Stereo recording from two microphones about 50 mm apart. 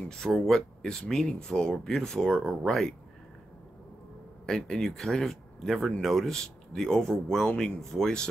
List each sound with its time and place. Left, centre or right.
0.1 s speech: centre
4.5 s speech: centre